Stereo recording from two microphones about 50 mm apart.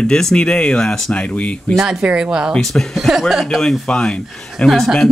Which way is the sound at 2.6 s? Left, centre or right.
Centre.